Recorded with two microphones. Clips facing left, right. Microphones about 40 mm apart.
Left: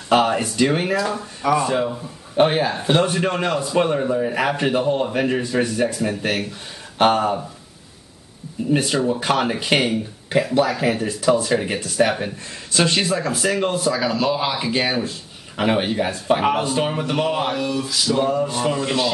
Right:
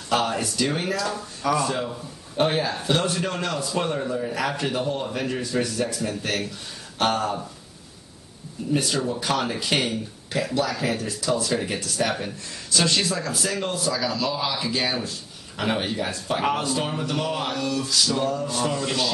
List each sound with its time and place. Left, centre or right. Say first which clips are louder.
0.1 s speech: left 6 dB; left
8.7 s speech: left 4 dB; left
15.0 s a sound: left 3 dB; left
15.7 s speech: left 5 dB; left